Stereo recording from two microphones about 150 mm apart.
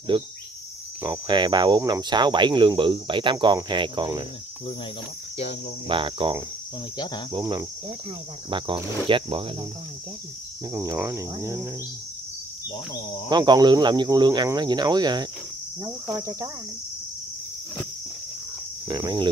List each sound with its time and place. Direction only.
0.1 s cricket: 35° right (ahead or behind)
5.9 s cricket: 35° right (ahead or behind)
7.0 s speech: 30° left (ahead or behind)
7.3 s speech: 30° right (ahead or behind)
8.5 s cricket: 35° right (ahead or behind)
10.7 s speech: 20° right (ahead or behind)
13.3 s speech: 30° right (ahead or behind)
18.9 s speech: 25° right (ahead or behind)